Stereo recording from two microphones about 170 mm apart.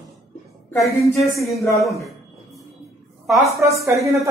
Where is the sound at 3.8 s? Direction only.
20° right (ahead or behind).